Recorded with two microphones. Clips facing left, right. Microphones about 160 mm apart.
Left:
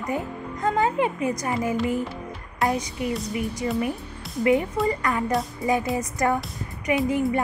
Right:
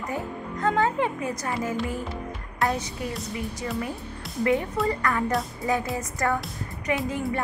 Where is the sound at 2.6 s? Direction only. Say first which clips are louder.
Left 2 dB; centre (ahead or behind).